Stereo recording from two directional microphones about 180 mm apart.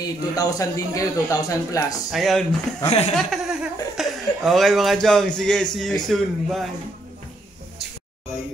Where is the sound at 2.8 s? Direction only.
35° left (ahead or behind).